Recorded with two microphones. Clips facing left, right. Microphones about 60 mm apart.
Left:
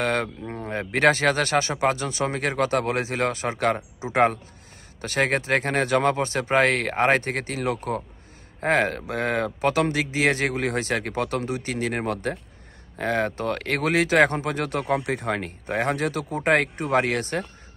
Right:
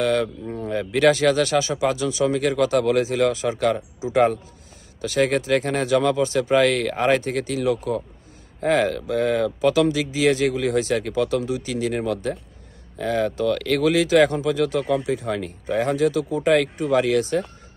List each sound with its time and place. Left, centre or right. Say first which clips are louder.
0.0 s speech: right 4 dB; left